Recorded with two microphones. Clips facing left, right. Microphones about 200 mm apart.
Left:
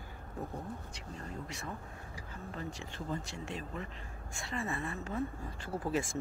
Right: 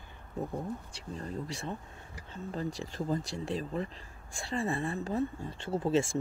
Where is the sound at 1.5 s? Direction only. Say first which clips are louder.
Right 4 dB; 30° right (ahead or behind).